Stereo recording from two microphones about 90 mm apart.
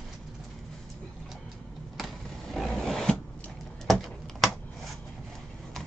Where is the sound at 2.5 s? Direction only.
5° left (ahead or behind).